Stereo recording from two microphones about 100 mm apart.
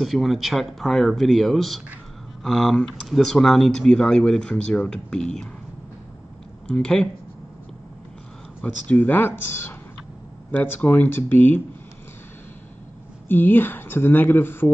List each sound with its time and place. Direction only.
0.0 s speech: centre (ahead or behind)
6.7 s speech: 10° left (ahead or behind)
8.6 s speech: 15° left (ahead or behind)
13.3 s speech: 20° left (ahead or behind)